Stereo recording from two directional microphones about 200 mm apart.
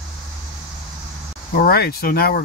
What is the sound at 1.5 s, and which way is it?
Speech, 50° left (ahead or behind).